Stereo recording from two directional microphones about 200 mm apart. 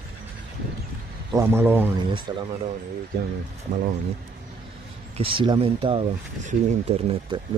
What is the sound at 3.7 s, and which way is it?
Speech, 45° right (ahead or behind).